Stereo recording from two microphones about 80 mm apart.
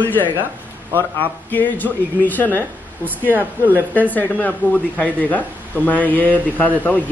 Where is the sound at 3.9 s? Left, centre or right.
Left.